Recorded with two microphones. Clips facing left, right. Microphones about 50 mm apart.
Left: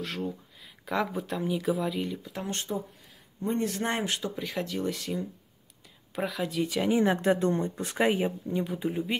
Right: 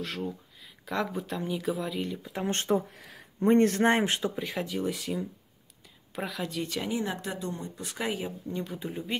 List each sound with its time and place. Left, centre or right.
0.0 s speech: centre
2.4 s speech: right
2.7 s speech: right
3.3 s a man's voice: right
3.8 s speech: right
4.4 s speech: centre
6.9 s speech: left
8.5 s speech: centre